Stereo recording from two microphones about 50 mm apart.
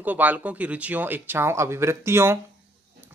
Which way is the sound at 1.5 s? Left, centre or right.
Right.